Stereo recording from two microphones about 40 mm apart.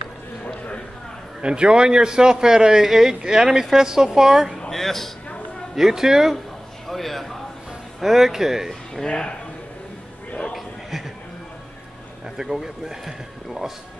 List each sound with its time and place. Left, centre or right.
1.4 s a man's voice: right
4.6 s a sound: centre
5.8 s speech: centre
6.9 s a man's voice: centre
8.0 s speech: centre
8.9 s speech: centre
10.5 s a sound: centre
12.4 s speech: centre